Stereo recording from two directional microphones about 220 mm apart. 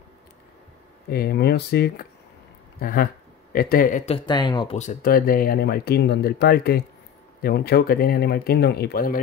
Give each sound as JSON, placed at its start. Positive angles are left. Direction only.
{"t": 1.0, "sound": "speech", "side_deg": 45}
{"t": 4.7, "sound": "speech", "side_deg": 35}